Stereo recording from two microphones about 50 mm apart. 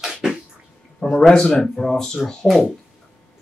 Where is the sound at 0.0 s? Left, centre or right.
Centre.